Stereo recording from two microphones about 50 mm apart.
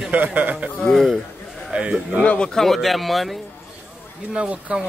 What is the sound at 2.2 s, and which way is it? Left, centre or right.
Speech, left.